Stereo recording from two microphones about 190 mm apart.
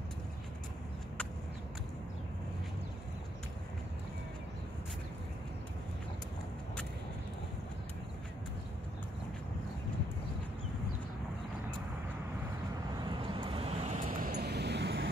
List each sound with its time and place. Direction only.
12.9 s vehicle: 25° right (ahead or behind); by 15.0 s 65° right (ahead or behind)